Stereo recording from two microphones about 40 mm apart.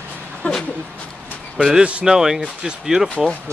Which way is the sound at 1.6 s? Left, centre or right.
Centre.